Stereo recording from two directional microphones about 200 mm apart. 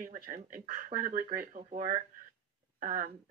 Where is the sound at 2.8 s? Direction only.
45° right (ahead or behind).